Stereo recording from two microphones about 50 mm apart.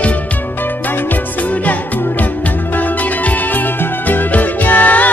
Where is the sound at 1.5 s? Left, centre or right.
Left.